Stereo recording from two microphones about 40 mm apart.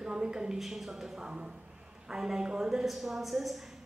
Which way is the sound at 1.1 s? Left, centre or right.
Right.